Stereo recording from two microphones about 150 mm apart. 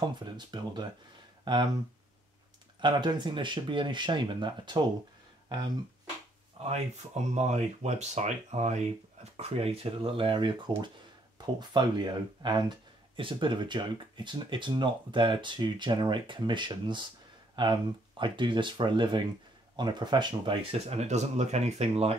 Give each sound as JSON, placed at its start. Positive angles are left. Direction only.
{"t": 0.2, "sound": "speech", "side_deg": -30}
{"t": 2.8, "sound": "speech", "side_deg": -30}
{"t": 6.6, "sound": "speech", "side_deg": -50}
{"t": 20.9, "sound": "speech", "side_deg": -50}